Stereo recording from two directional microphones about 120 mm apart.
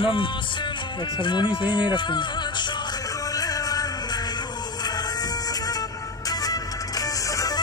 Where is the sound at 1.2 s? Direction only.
40° left (ahead or behind).